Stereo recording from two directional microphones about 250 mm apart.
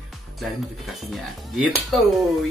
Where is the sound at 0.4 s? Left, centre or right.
Centre.